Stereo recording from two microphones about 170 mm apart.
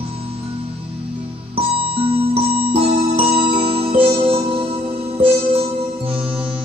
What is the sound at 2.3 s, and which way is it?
Music, 35° right (ahead or behind).